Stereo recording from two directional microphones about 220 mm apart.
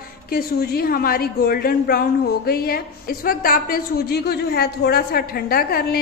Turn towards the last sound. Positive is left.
turn(degrees=45)  # may be behind; listen again after turning